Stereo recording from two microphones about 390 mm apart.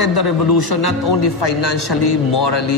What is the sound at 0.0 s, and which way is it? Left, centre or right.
A man's voice, left.